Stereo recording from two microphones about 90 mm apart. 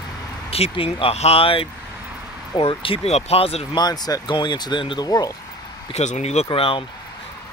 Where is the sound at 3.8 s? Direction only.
45° left (ahead or behind).